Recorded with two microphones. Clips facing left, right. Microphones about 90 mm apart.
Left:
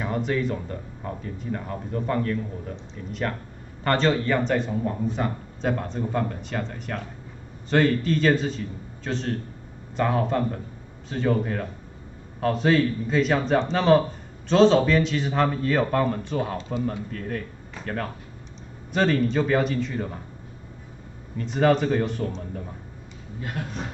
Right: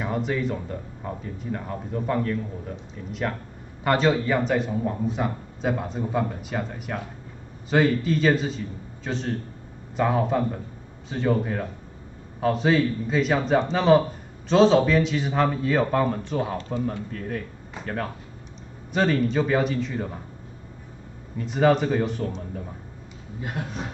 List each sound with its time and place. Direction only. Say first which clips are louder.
0.0 s a man's voice: even; 5° right (ahead or behind)
21.4 s speech: even; 5° right (ahead or behind)
23.6 s speech: even; 20° right (ahead or behind)